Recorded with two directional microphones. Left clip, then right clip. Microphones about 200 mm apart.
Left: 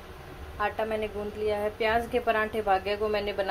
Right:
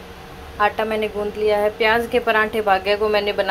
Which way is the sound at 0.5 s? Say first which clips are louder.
Right 10 dB; 5° right (ahead or behind).